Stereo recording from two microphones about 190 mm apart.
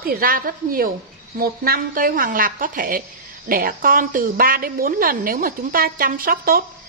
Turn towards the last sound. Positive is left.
turn(degrees=-50)  # may be behind; listen again after turning